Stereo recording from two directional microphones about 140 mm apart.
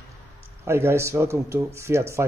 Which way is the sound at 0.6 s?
15° right (ahead or behind).